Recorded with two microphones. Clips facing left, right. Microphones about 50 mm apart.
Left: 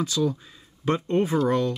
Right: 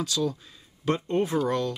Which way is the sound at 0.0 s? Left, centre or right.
Centre.